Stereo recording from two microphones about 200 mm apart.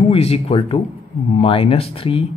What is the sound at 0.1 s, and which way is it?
A man's voice, 30° left (ahead or behind).